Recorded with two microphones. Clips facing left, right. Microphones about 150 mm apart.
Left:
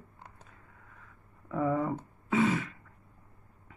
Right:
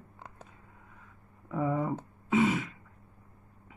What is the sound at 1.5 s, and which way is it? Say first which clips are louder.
Speech: left 1 dB; 10° right (ahead or behind).